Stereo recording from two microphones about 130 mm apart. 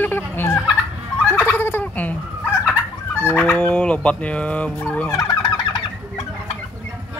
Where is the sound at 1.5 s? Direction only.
15° left (ahead or behind).